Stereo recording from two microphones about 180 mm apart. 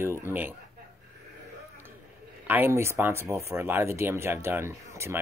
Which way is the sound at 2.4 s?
10° right (ahead or behind).